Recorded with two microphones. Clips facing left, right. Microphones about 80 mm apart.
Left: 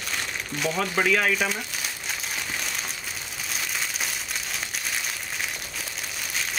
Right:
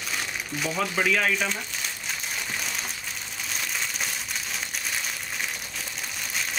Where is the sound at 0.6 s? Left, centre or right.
Centre.